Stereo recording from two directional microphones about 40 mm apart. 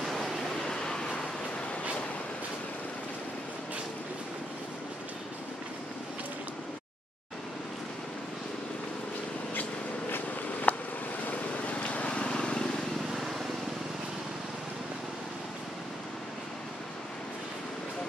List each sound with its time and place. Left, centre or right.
0.0 s a sound: centre
0.6 s vehicle: centre
10.7 s vehicle: left; by 12.8 s centre
13.1 s vehicle: centre